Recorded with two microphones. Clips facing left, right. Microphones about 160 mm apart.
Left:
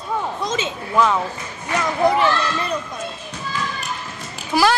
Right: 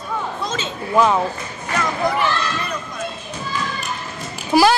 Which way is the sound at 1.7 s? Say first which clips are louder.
Left 3 dB; 25° left (ahead or behind).